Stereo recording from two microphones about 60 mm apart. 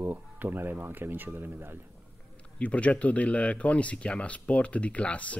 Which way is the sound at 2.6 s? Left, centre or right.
Left.